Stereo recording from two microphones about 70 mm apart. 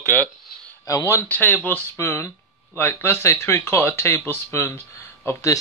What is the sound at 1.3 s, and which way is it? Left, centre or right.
Speech, left.